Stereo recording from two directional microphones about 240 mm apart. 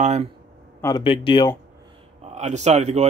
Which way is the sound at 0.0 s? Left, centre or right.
Right.